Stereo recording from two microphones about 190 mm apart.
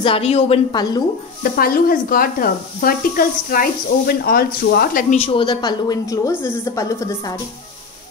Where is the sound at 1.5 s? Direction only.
50° left (ahead or behind).